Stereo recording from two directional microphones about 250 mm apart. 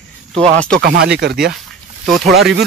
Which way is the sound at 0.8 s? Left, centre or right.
Right.